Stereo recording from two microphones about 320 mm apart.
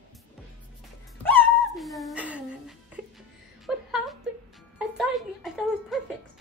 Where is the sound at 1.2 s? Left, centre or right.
Centre.